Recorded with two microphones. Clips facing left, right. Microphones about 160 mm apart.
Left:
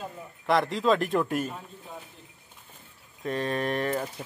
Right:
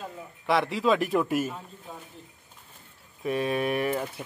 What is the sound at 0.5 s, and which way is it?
Speech, 5° right (ahead or behind).